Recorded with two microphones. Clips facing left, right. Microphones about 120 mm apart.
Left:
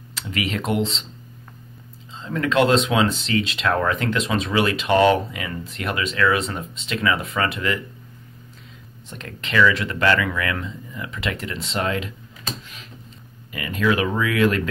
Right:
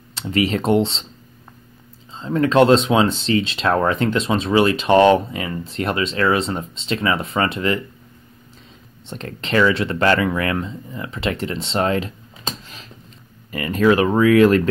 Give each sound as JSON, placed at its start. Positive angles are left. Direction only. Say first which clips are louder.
{"t": 0.1, "sound": "speech", "louder": "right 7 dB", "side_deg": -30}
{"t": 2.1, "sound": "speech", "louder": "right 5 dB", "side_deg": -30}
{"t": 9.1, "sound": "speech", "louder": "right 3 dB", "side_deg": -30}